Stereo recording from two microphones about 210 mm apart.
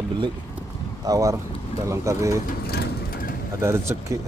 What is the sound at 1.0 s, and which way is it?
Speech, 15° right (ahead or behind).